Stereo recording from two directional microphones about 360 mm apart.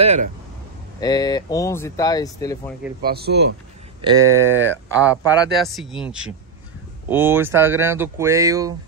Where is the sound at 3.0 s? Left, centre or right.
Right.